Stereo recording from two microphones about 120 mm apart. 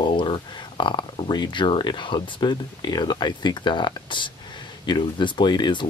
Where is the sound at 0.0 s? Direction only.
45° left (ahead or behind).